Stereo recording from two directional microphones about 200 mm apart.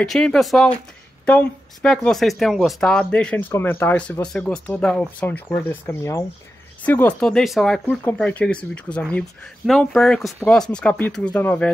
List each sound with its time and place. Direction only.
0.0 s speech: centre (ahead or behind)